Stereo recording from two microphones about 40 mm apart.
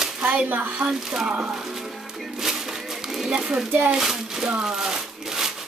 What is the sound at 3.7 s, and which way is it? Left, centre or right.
Speech, right.